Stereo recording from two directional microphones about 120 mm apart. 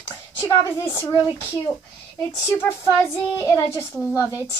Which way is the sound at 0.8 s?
20° left (ahead or behind).